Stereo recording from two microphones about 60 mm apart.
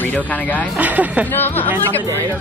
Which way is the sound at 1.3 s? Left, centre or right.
Left.